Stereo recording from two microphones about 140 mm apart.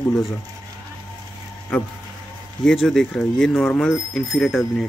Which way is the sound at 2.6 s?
5° left (ahead or behind).